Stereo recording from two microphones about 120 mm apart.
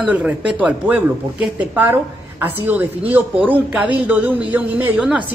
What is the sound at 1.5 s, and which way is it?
Speech, 15° right (ahead or behind).